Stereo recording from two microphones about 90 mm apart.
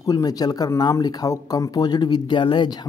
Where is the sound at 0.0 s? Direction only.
45° left (ahead or behind).